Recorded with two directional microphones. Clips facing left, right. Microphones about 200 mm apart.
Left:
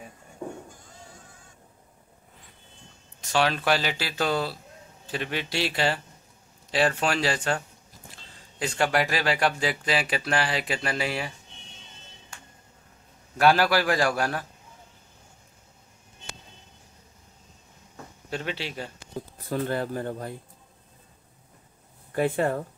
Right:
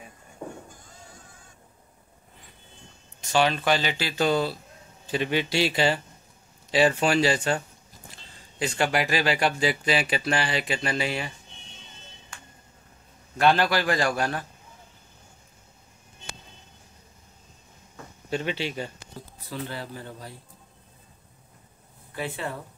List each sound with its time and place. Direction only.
3.2 s speech: centre (ahead or behind)
7.0 s speech: centre (ahead or behind)
8.5 s speech: centre (ahead or behind)
13.4 s speech: 5° left (ahead or behind)
18.3 s speech: centre (ahead or behind)
19.5 s speech: 50° left (ahead or behind)
22.1 s speech: 50° left (ahead or behind)